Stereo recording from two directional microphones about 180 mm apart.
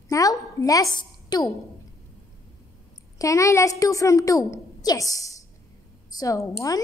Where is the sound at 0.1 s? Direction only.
20° left (ahead or behind).